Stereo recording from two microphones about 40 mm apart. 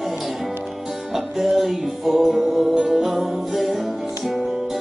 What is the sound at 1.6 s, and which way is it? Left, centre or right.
Music, centre.